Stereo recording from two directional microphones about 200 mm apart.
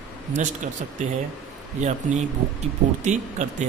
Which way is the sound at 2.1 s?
35° right (ahead or behind).